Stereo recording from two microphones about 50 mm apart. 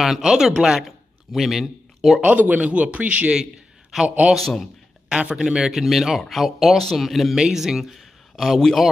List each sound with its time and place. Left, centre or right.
0.0 s speech: centre
0.8 s a sound: centre
2.2 s a man's voice: right
3.9 s speech: centre
5.1 s speech: centre